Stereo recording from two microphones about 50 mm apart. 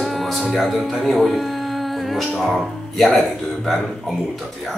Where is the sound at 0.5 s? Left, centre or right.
Centre.